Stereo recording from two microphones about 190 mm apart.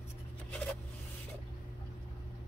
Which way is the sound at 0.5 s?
10° left (ahead or behind).